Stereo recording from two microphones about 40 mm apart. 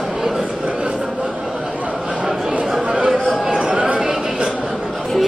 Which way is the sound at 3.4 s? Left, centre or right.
Right.